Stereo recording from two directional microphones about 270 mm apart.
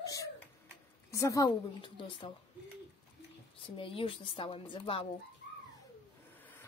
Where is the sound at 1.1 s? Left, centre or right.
Centre.